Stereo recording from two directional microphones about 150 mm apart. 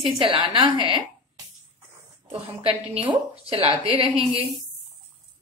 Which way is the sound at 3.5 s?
40° right (ahead or behind).